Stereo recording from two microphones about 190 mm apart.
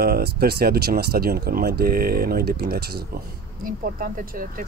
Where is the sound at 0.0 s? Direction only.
55° right (ahead or behind).